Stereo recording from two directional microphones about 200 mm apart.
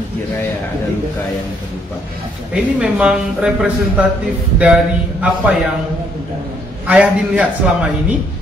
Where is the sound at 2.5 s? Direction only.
5° right (ahead or behind).